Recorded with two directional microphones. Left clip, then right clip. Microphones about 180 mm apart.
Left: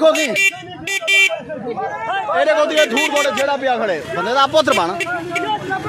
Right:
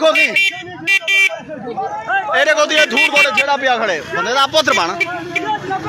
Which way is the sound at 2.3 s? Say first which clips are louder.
Right 1 dB; 5° left (ahead or behind).